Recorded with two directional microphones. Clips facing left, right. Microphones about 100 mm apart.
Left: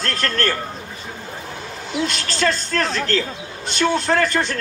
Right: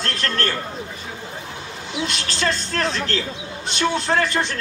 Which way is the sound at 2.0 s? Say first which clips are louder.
Left 3 dB; 45° left (ahead or behind).